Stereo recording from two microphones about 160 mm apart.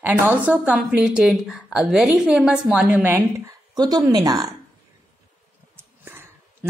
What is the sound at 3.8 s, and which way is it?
Speech, 25° right (ahead or behind).